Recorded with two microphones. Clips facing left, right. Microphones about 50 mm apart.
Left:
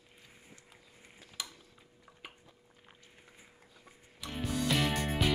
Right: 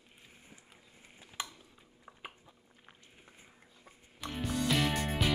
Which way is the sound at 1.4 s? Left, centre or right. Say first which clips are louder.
Right 3 dB; right.